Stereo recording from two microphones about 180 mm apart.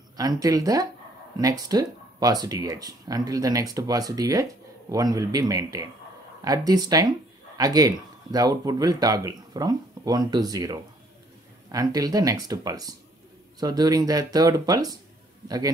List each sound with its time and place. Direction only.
0.2 s a man's voice: 20° right (ahead or behind)